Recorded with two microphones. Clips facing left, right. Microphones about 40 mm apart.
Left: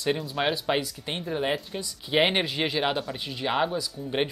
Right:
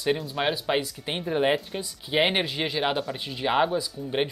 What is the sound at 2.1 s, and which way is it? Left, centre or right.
Speech, centre.